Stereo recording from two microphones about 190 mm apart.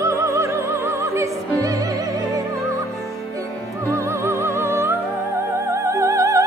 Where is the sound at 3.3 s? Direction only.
15° right (ahead or behind).